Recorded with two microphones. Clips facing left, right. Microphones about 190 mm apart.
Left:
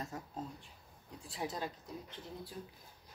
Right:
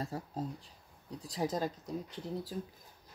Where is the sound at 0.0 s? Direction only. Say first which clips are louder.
Right 5 dB; 35° right (ahead or behind).